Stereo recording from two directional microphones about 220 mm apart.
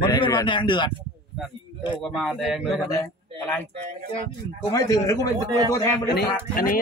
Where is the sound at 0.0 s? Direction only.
20° left (ahead or behind).